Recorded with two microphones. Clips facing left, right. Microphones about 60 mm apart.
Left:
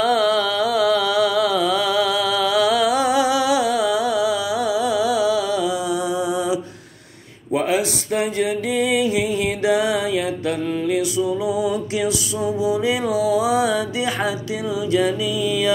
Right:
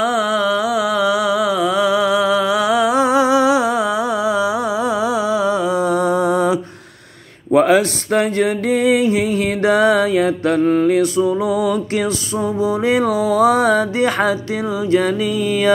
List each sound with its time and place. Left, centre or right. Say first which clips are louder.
0.0 s music: right 1 dB; centre; by 15.7 s right